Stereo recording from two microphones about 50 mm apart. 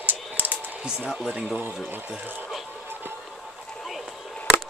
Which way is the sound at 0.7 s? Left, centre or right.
Centre.